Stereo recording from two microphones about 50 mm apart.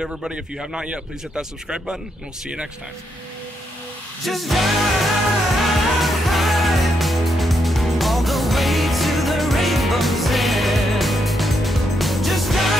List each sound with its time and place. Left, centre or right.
0.8 s speech: right
4.3 s music: centre